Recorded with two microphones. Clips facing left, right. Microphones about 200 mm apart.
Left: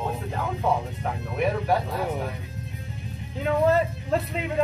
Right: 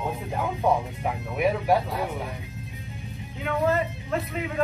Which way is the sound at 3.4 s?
30° left (ahead or behind).